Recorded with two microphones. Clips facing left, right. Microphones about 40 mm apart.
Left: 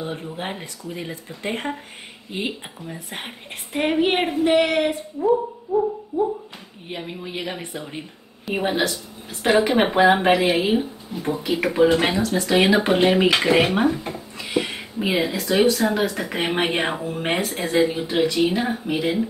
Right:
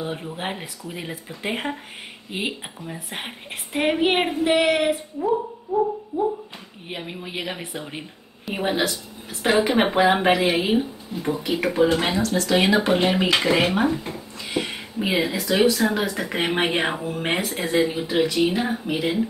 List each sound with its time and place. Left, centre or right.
0.0 s a woman's voice: centre
14.5 s a woman's voice: centre